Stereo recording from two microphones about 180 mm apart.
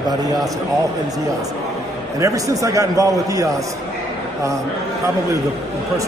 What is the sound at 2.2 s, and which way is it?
A man's voice, 15° right (ahead or behind).